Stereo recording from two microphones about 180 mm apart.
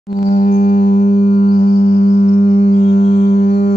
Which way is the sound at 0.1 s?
55° left (ahead or behind).